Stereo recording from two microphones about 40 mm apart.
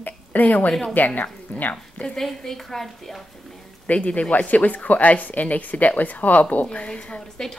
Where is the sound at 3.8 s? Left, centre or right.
Left.